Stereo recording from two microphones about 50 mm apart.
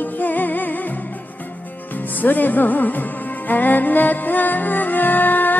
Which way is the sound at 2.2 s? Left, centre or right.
Left.